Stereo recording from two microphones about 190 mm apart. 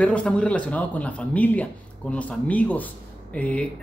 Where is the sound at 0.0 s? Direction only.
5° left (ahead or behind).